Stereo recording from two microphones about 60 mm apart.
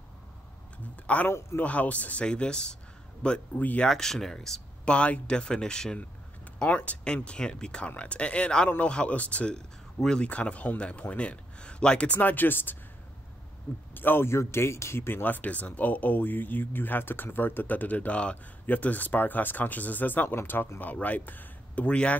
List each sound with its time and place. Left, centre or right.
1.0 s a man's voice: left
3.5 s speech: left
3.8 s speech: centre
4.9 s speech: centre
5.9 s a sound: left
7.2 s speech: centre
8.6 s speech: left
9.9 s speech: centre
10.2 s speech: left
12.2 s speech: left
13.9 s speech: left; by 22.2 s centre